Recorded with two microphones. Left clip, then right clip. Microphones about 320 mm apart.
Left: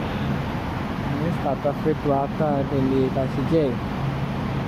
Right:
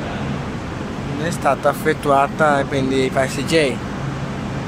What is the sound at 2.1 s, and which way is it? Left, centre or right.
Speech, right.